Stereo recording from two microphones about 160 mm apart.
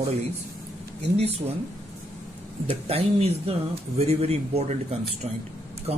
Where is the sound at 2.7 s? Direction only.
40° right (ahead or behind).